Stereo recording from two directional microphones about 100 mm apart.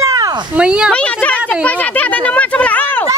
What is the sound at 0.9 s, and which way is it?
Speech, 10° left (ahead or behind).